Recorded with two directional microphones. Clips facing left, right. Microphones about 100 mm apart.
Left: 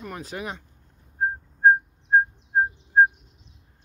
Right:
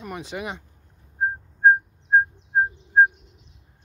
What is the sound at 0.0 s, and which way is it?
Speech, centre (ahead or behind).